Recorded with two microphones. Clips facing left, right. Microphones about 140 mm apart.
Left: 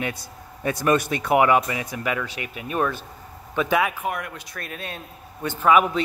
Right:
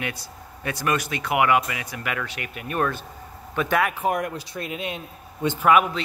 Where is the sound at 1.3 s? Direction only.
30° left (ahead or behind).